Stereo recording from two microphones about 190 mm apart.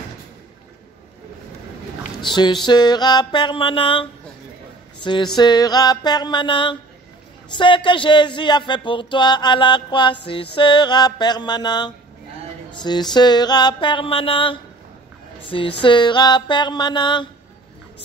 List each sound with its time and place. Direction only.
2.2 s a man's voice: 25° left (ahead or behind)